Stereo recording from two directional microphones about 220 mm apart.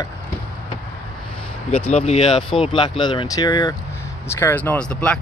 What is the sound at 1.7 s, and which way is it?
Speech, 30° left (ahead or behind).